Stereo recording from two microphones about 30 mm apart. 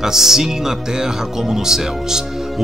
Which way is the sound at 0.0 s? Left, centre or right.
Centre.